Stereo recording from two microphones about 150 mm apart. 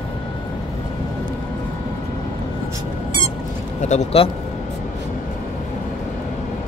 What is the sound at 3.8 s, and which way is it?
Speech, 50° left (ahead or behind).